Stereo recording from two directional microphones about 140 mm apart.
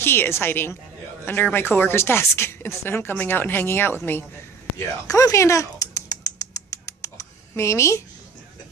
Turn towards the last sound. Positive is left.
turn(degrees=20)  # may be behind; listen again after turning